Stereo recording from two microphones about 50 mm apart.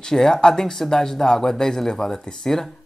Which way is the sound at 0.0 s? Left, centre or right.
Centre.